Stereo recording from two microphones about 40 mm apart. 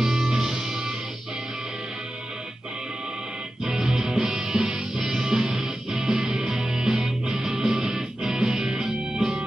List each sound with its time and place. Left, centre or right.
0.0 s music: centre
3.6 s music: right